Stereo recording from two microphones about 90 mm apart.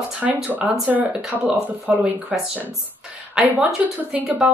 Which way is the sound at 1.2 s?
5° right (ahead or behind).